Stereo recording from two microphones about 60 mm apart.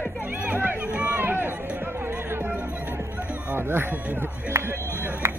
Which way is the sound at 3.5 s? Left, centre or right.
Right.